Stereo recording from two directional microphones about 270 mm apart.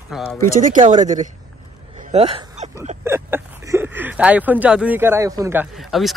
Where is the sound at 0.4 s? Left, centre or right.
Right.